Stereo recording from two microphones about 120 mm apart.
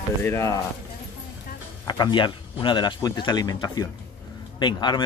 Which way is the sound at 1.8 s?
40° left (ahead or behind).